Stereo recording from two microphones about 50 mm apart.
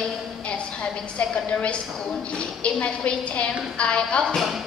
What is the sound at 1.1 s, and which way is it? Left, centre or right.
A woman's voice, left.